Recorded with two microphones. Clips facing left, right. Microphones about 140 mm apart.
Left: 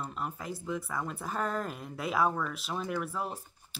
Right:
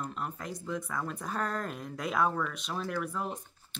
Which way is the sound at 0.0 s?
5° left (ahead or behind).